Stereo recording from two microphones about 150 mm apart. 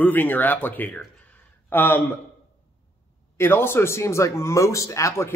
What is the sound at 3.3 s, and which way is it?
A man's voice, 15° left (ahead or behind).